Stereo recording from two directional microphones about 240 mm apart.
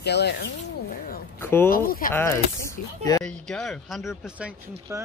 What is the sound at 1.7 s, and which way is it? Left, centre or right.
Speech, left.